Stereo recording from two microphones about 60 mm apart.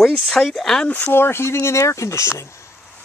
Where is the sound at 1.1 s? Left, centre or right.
Left.